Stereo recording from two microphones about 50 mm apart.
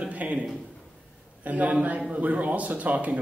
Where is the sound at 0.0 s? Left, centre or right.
Right.